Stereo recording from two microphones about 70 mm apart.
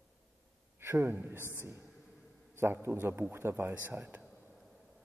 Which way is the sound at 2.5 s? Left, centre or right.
Right.